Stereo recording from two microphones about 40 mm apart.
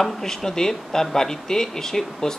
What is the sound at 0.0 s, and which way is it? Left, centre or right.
Speech, centre.